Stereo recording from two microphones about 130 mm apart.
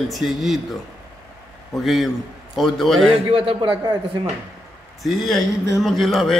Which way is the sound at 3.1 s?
45° right (ahead or behind).